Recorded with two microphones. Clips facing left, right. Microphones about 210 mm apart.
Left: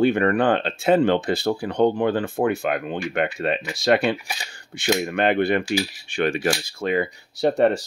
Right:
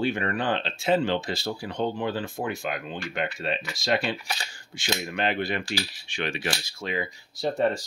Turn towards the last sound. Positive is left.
turn(degrees=65)  # may be behind; listen again after turning